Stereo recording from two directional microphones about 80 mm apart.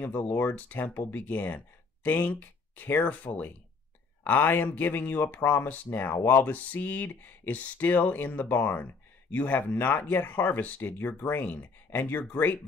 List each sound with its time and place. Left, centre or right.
0.0 s speech: left